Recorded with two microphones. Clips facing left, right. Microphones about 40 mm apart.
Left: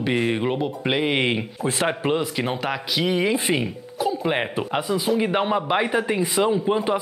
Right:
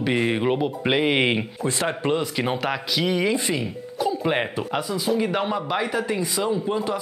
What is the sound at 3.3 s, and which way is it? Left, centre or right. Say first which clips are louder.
A man's voice: left 2 dB; left.